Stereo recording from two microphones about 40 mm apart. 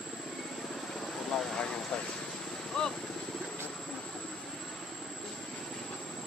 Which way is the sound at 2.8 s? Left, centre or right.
Centre.